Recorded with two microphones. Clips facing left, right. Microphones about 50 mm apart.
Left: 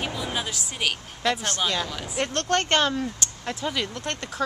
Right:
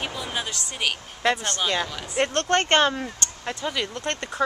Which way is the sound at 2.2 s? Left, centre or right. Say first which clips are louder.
Right 3 dB; right.